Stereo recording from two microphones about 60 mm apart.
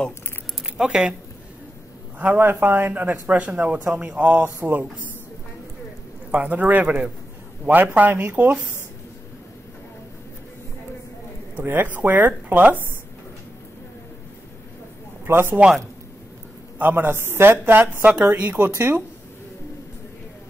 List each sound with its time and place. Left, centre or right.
0.7 s speech: centre
2.1 s speech: right
6.3 s speech: right
11.6 s speech: right
15.2 s speech: right
16.7 s speech: right
18.2 s speech: right